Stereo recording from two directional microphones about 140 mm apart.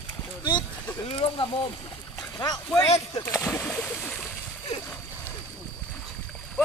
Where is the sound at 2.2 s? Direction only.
25° left (ahead or behind).